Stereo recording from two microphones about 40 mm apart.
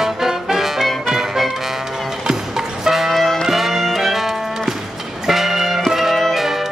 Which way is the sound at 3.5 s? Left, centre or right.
Centre.